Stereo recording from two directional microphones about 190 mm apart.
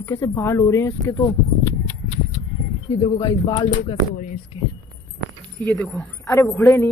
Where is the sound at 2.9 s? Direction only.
20° left (ahead or behind).